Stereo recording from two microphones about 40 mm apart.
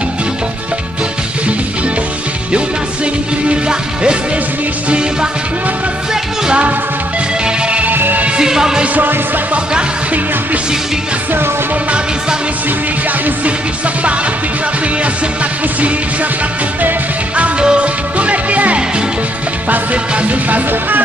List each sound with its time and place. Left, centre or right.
3.4 s music: right
7.8 s music: right
8.4 s music: centre
8.9 s music: right
9.5 s music: right
17.4 s music: right